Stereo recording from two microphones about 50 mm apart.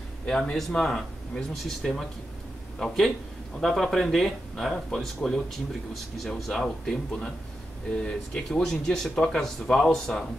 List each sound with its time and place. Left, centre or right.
0.3 s speech: centre
1.5 s speech: centre; by 8.2 s left
8.5 s speech: centre